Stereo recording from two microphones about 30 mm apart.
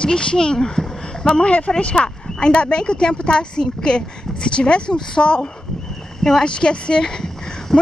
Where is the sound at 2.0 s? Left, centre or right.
Left.